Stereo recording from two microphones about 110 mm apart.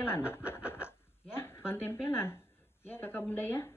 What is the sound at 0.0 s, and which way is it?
Speech, 20° left (ahead or behind).